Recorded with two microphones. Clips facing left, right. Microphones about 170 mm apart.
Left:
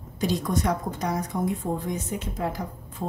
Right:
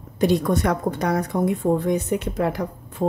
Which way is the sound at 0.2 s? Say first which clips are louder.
Right 6 dB; 60° right (ahead or behind).